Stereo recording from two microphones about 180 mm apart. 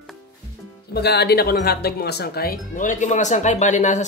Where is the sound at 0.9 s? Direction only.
65° left (ahead or behind).